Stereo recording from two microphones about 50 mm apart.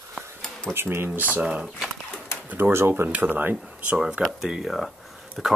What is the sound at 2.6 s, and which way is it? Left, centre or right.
Speech, right.